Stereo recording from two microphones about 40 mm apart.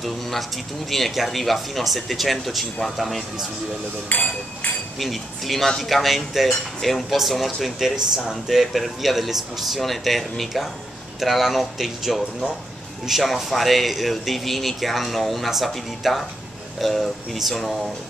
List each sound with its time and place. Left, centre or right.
0.0 s speech: centre
4.1 s speech: left
4.9 s speech: centre